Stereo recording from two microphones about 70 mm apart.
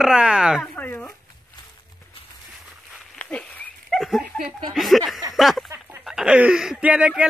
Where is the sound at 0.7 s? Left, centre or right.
Left.